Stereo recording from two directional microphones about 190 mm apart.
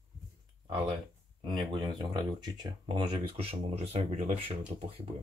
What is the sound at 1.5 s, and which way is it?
Speech, 25° right (ahead or behind).